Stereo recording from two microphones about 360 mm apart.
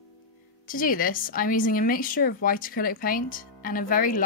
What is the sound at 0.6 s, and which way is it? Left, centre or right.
A woman's voice, left.